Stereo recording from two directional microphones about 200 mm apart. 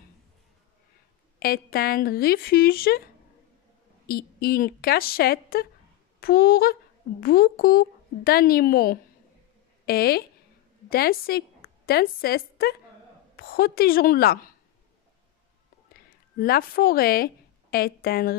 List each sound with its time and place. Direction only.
1.4 s speech: 50° left (ahead or behind)
4.1 s a woman's voice: 50° left (ahead or behind)
16.3 s a woman's voice: 50° left (ahead or behind)